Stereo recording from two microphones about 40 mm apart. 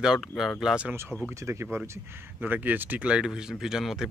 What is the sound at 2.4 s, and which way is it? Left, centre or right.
Speech, right.